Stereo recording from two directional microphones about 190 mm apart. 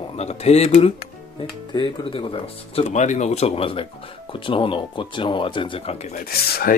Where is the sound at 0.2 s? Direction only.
35° left (ahead or behind).